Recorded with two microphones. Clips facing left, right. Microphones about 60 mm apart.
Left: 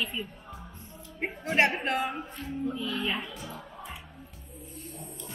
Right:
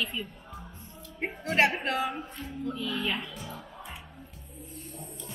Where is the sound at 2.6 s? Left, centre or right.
Left.